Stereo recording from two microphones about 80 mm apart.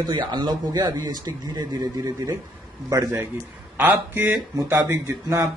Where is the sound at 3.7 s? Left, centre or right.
Right.